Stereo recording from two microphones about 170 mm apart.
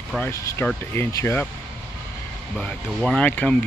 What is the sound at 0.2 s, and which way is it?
Speech, 15° left (ahead or behind).